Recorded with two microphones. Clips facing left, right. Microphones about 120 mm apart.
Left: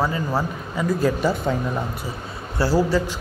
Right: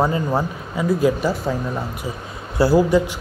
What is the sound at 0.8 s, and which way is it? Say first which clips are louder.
Speech: right 3 dB; 10° right (ahead or behind).